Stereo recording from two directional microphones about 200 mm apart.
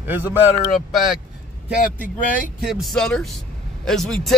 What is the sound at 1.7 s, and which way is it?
A man's voice, 5° right (ahead or behind).